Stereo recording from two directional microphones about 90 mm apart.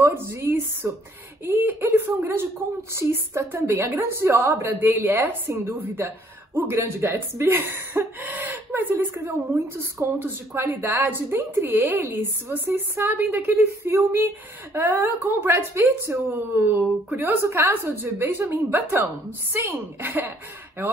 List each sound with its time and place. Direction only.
0.0 s a woman's voice: 30° right (ahead or behind)